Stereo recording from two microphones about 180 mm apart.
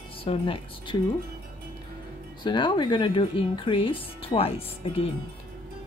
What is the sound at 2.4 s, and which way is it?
Speech, 25° left (ahead or behind).